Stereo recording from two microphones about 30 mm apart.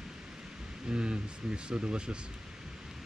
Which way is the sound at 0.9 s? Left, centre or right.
Right.